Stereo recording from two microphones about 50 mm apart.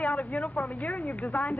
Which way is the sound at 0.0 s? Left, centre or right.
Left.